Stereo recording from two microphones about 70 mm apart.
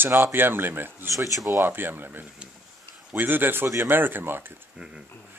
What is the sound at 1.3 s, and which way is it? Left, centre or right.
Speech, right.